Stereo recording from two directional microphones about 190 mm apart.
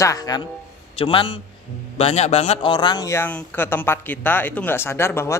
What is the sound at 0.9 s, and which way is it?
A man's voice, 30° left (ahead or behind).